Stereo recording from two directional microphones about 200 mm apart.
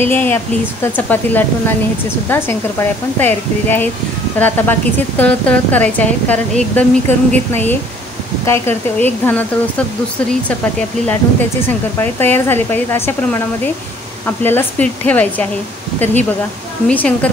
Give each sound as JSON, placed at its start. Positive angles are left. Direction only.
{"t": 0.0, "sound": "speech", "side_deg": 10}
{"t": 11.6, "sound": "speech", "side_deg": 10}
{"t": 16.8, "sound": "speech", "side_deg": 5}